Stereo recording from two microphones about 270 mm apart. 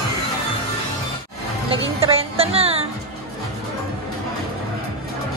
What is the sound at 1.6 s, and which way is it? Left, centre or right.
Speech, right.